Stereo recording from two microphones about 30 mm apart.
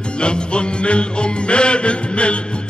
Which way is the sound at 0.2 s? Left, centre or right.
Left.